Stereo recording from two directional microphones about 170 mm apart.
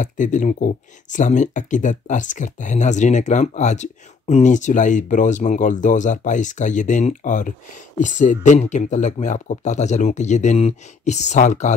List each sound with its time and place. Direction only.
0.0 s speech: 45° left (ahead or behind)